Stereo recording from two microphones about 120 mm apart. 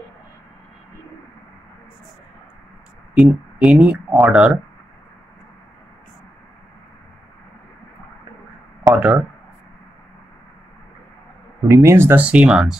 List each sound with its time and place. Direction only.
3.2 s speech: 10° right (ahead or behind)
8.9 s speech: 10° right (ahead or behind)
11.6 s speech: 25° right (ahead or behind); by 12.7 s 5° right (ahead or behind)